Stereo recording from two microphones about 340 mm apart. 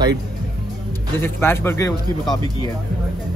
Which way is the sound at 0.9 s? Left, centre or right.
Centre.